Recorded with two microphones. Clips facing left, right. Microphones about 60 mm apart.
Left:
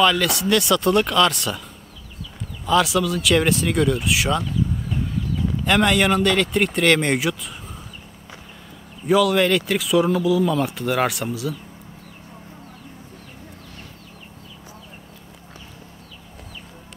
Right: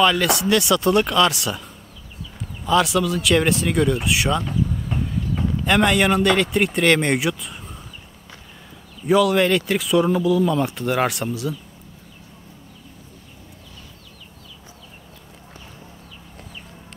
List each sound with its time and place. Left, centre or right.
0.0 s speech: centre
2.6 s speech: centre
4.5 s a sound: right
5.6 s speech: centre
9.0 s speech: centre